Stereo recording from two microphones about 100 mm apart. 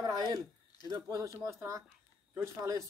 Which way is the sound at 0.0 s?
40° right (ahead or behind).